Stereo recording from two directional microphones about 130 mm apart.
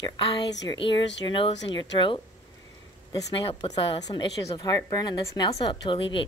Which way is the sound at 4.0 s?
30° left (ahead or behind).